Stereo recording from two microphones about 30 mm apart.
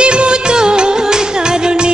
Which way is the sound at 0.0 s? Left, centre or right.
Right.